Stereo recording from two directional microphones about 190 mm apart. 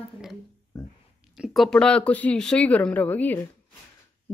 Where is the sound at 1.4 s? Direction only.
Centre (ahead or behind).